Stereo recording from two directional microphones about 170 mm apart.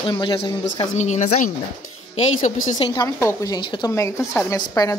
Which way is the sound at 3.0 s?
15° left (ahead or behind).